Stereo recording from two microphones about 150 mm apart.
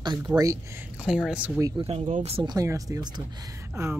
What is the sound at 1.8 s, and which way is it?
Speech, 40° right (ahead or behind).